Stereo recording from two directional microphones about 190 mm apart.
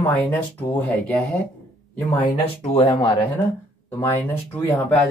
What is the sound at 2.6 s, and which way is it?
Speech, 30° left (ahead or behind).